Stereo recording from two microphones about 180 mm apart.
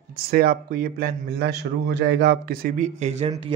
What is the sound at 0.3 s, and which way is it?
A man's voice, 60° right (ahead or behind).